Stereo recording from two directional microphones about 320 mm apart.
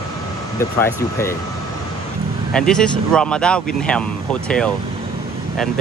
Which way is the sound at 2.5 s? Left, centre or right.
Centre.